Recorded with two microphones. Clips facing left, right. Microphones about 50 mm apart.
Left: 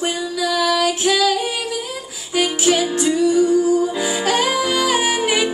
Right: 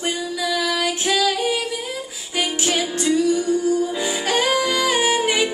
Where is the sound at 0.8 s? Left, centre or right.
Centre.